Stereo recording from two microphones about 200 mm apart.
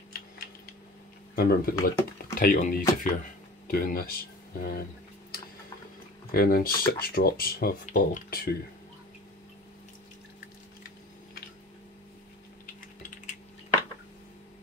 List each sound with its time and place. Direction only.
1.3 s speech: 50° left (ahead or behind)
6.3 s speech: 45° left (ahead or behind)